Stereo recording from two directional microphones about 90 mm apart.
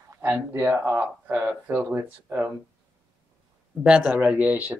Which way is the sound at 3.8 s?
10° right (ahead or behind).